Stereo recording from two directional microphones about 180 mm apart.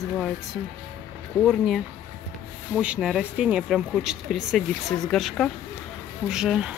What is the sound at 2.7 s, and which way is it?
Speech, 5° right (ahead or behind).